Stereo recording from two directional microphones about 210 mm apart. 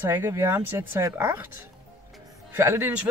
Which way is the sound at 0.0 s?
10° right (ahead or behind).